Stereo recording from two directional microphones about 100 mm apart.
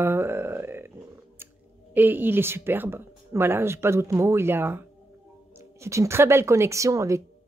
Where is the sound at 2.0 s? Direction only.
20° right (ahead or behind).